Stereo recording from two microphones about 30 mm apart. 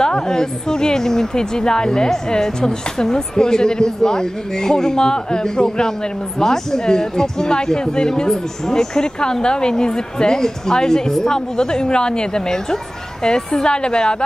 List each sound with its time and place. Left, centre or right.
0.0 s a woman's voice: left